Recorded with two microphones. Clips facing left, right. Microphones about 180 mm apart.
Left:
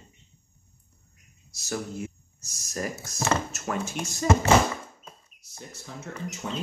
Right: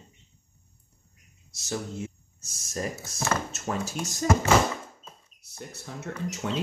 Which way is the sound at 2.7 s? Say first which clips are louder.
Even; 30° right (ahead or behind).